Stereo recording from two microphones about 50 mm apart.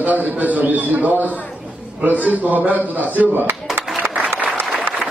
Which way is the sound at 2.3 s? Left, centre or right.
Right.